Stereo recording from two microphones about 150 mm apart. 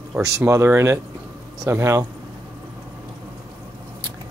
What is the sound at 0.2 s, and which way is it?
Speech, 20° right (ahead or behind).